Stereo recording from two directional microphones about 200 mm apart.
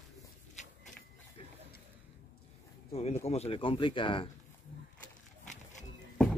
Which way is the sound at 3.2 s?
30° left (ahead or behind).